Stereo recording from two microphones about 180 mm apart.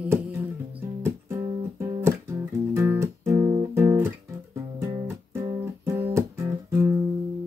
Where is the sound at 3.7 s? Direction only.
10° right (ahead or behind).